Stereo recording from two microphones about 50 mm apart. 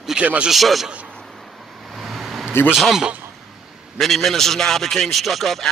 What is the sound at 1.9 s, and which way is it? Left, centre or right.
Vehicle, centre.